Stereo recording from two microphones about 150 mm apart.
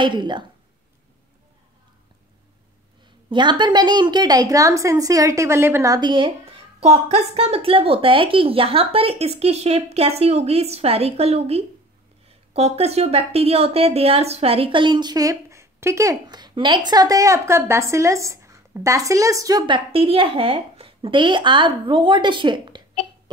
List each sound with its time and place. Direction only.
0.0 s speech: 30° right (ahead or behind)
3.3 s a woman's voice: 30° right (ahead or behind)
5.9 s speech: 30° right (ahead or behind)
6.8 s a woman's voice: 45° right (ahead or behind)